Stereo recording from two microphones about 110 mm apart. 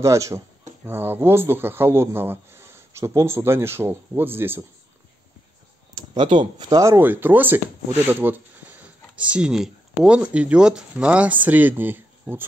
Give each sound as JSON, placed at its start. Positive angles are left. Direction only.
{"t": 0.0, "sound": "speech", "side_deg": -25}
{"t": 5.9, "sound": "speech", "side_deg": -45}
{"t": 6.7, "sound": "speech", "side_deg": -25}